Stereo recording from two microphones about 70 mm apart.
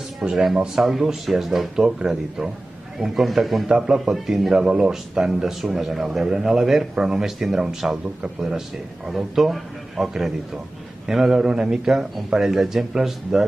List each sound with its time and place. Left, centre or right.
0.2 s a man's voice: centre